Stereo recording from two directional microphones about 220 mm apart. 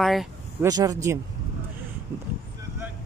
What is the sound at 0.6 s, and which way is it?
Speech, 15° right (ahead or behind).